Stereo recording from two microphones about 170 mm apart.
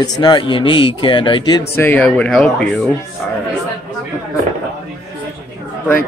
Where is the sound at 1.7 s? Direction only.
10° left (ahead or behind).